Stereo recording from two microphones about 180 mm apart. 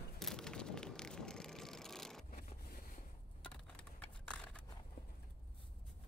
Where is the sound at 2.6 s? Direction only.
55° left (ahead or behind).